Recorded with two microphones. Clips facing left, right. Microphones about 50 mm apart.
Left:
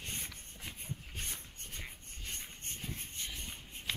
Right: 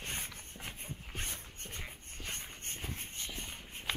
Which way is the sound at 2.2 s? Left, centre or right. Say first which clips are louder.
Right 2 dB; right.